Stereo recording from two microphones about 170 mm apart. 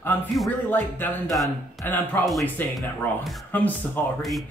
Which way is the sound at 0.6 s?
10° left (ahead or behind).